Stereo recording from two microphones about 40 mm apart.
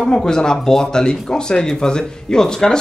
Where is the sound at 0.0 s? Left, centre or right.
Centre.